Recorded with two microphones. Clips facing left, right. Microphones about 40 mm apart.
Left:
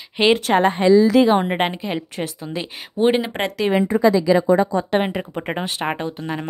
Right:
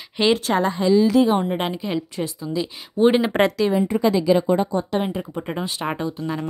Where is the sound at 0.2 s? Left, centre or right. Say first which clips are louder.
Left 3 dB; left.